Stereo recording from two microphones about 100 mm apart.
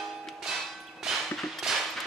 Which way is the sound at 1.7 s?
5° right (ahead or behind).